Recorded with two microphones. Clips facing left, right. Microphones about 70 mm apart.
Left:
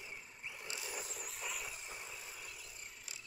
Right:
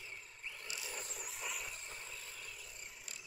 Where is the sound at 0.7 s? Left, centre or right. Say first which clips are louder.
Left 2 dB; centre.